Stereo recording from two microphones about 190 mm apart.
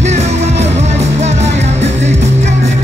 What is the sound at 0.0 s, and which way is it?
Music, 35° right (ahead or behind).